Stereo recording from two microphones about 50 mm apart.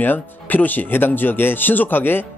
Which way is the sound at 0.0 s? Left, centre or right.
Left.